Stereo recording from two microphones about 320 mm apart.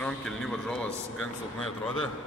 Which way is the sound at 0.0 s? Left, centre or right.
Centre.